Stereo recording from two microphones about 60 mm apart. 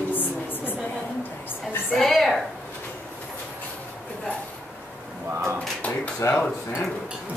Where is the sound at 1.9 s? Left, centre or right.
Centre.